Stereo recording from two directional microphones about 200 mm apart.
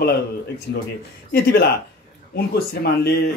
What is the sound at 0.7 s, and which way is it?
Speech, 60° left (ahead or behind).